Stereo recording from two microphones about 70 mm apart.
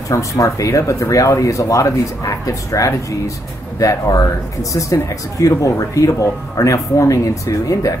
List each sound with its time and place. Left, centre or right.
0.4 s speech: left